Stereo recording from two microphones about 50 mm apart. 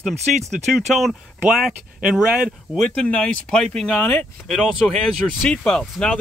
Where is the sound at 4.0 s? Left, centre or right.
Left.